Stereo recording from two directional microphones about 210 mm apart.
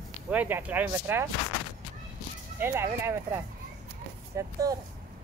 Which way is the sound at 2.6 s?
10° right (ahead or behind).